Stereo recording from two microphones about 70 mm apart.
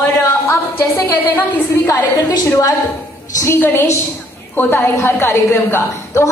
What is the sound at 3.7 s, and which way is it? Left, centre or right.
A woman's voice, left.